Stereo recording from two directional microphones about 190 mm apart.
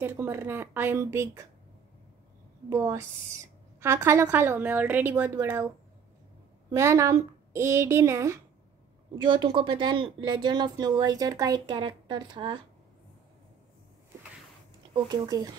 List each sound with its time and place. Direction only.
0.0 s a woman's voice: 10° right (ahead or behind)
2.7 s a woman's voice: 15° right (ahead or behind)
6.7 s a woman's voice: 15° right (ahead or behind)
15.0 s speech: 20° right (ahead or behind)